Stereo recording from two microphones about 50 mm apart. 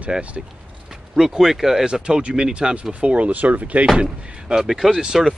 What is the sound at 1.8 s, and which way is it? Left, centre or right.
Speech, centre.